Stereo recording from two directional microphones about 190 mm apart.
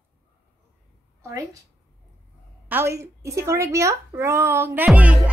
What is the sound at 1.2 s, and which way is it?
Speech, 15° right (ahead or behind).